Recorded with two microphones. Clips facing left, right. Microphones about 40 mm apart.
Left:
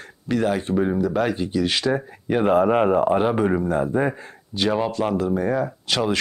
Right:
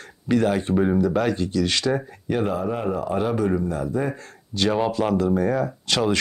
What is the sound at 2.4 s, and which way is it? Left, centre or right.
Speech, left.